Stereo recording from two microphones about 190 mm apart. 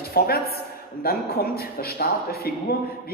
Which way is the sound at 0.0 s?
55° left (ahead or behind).